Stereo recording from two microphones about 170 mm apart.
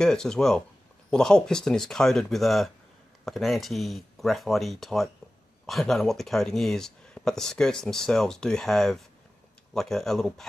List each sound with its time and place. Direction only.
0.0 s speech: 5° left (ahead or behind)